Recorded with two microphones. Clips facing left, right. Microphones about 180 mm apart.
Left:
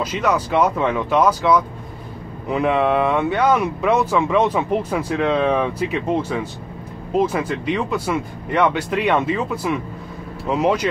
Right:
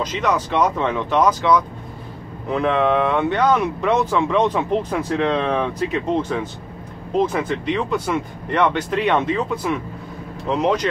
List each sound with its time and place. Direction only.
0.0 s speech: 5° left (ahead or behind)